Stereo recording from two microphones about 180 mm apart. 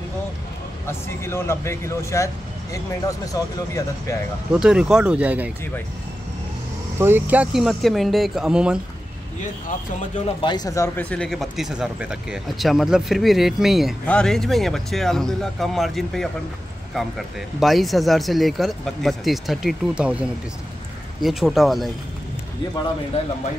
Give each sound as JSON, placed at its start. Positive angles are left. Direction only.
{"t": 0.8, "sound": "speech", "side_deg": 15}
{"t": 4.6, "sound": "speech", "side_deg": -5}
{"t": 7.0, "sound": "speech", "side_deg": -10}
{"t": 10.2, "sound": "speech", "side_deg": 25}
{"t": 17.6, "sound": "speech", "side_deg": 0}